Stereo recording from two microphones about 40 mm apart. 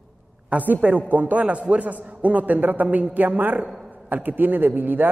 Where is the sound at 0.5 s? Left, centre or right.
Right.